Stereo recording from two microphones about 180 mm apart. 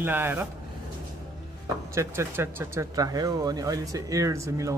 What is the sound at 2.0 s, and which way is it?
Speech, 15° right (ahead or behind).